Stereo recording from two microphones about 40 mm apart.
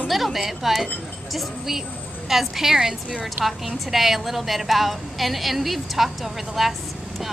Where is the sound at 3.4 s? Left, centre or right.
Centre.